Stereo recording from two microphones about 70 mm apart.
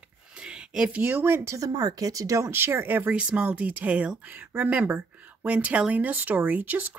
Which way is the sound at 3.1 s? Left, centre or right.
Centre.